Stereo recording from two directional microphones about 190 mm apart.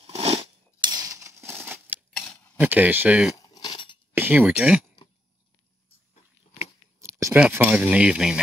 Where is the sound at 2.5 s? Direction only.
10° right (ahead or behind).